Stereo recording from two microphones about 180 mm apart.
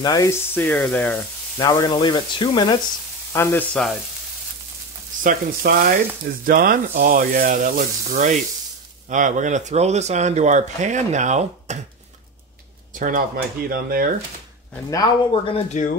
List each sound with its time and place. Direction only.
0.0 s speech: 20° left (ahead or behind)
1.6 s speech: 25° left (ahead or behind)
3.3 s speech: 15° left (ahead or behind)
5.2 s frying: 55° right (ahead or behind)
6.4 s speech: 50° right (ahead or behind)
12.9 s speech: 45° right (ahead or behind)
14.9 s speech: 20° left (ahead or behind)
15.5 s speech: 40° left (ahead or behind)